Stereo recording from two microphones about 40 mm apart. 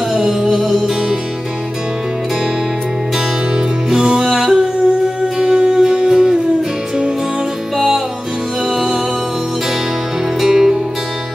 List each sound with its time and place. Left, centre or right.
0.1 s music: centre
3.5 s music: centre
4.3 s singing: centre
5.4 s music: centre
8.6 s music: centre
10.4 s music: centre